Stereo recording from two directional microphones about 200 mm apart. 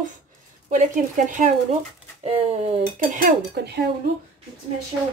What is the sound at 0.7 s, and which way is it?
Speech, 40° right (ahead or behind).